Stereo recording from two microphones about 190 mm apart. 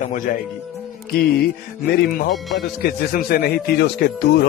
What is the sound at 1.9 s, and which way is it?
Speech, 60° left (ahead or behind).